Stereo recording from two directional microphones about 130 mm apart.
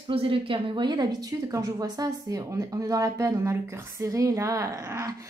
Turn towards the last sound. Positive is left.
turn(degrees=-25)  # may be behind; listen again after turning